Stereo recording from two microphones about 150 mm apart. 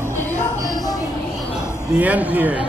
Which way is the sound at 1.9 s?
10° right (ahead or behind).